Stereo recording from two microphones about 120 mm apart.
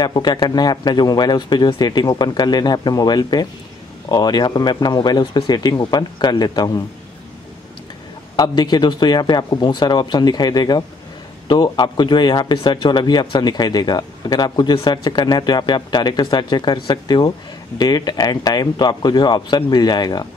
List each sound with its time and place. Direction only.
0.0 s speech: 35° left (ahead or behind)
8.4 s speech: 35° left (ahead or behind)